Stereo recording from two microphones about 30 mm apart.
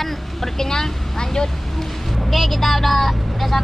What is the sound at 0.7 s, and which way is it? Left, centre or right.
Speech, centre.